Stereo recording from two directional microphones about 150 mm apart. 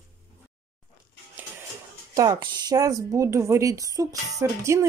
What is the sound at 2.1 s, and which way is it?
A woman's voice, 25° right (ahead or behind).